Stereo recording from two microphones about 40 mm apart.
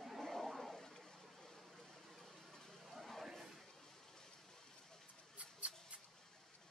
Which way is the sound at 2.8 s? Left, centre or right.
Centre.